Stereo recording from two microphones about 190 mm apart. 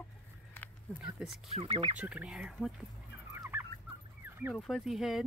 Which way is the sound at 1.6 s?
30° right (ahead or behind).